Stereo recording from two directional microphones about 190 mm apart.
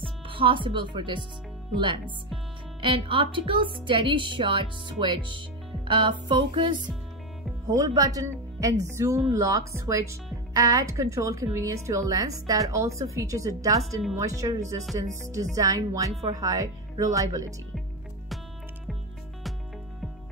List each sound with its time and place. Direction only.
0.3 s speech: 25° right (ahead or behind)